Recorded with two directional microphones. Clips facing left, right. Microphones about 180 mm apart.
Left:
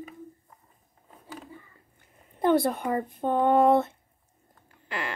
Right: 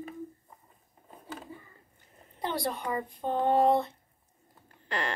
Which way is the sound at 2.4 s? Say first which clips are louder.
Left 9 dB; 50° left (ahead or behind).